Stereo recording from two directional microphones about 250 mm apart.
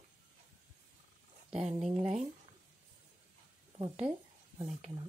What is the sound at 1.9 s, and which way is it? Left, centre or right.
Speech, right.